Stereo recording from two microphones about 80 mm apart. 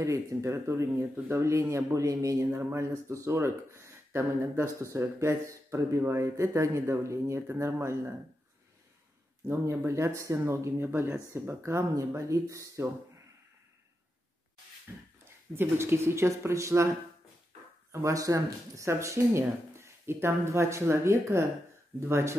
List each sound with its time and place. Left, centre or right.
0.0 s speech: right
9.5 s speech: right
15.5 s speech: right
17.9 s speech: right